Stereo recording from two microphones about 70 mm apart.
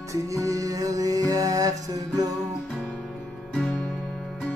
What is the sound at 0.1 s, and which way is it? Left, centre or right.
Music, right.